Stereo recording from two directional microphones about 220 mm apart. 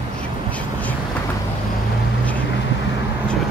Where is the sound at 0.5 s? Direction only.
5° left (ahead or behind).